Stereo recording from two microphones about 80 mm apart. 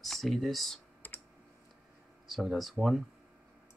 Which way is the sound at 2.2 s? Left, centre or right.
Centre.